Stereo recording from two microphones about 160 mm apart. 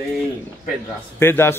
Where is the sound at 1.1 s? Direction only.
15° left (ahead or behind).